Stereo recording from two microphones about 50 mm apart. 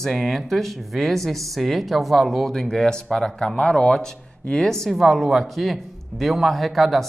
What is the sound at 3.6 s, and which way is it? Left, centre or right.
Speech, centre.